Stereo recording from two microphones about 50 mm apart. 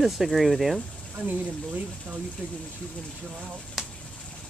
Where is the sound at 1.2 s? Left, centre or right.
Right.